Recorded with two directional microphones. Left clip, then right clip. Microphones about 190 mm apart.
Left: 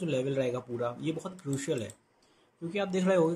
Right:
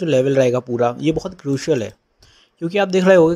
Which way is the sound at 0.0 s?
35° right (ahead or behind).